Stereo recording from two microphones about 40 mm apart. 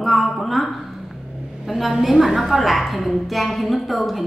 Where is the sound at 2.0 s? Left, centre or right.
Centre.